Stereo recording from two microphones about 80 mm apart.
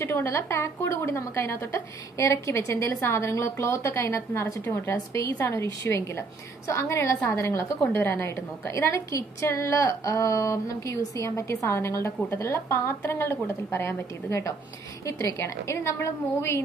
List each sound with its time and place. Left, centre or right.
0.0 s a woman's voice: left